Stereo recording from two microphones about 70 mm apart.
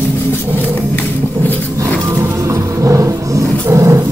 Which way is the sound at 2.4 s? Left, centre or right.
Right.